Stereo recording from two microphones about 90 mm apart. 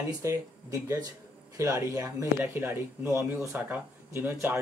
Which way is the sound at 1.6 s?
35° right (ahead or behind).